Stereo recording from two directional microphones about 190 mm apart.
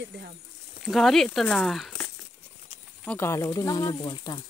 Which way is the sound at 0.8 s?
Centre (ahead or behind).